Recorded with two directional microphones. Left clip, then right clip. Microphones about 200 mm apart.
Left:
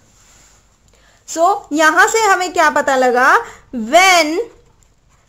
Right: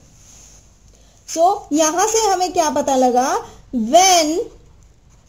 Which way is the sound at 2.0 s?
15° left (ahead or behind).